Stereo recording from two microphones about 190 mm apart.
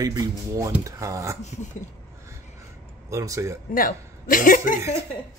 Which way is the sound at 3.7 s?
45° left (ahead or behind).